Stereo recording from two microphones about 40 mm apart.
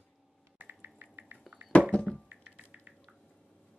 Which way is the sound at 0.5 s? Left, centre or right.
Right.